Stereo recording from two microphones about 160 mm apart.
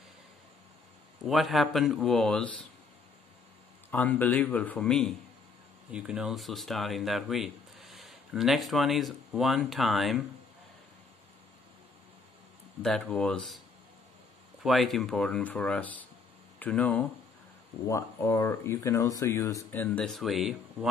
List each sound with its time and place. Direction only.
1.2 s speech: centre (ahead or behind)
3.9 s speech: 10° left (ahead or behind)
12.8 s speech: 5° left (ahead or behind)
14.6 s speech: centre (ahead or behind)